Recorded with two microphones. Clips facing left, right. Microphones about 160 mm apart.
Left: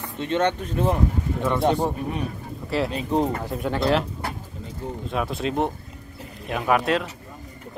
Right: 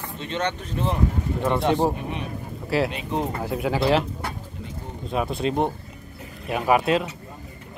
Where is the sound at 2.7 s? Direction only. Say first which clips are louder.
Left 1 dB; 5° right (ahead or behind).